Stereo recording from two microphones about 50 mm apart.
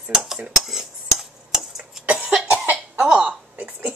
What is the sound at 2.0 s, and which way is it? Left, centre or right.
Cough, centre.